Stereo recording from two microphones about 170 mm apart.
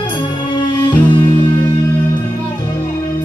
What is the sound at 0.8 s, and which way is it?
Music, 25° left (ahead or behind).